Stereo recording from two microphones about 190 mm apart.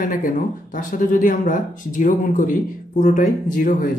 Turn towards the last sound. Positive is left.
turn(degrees=45)  # may be behind; listen again after turning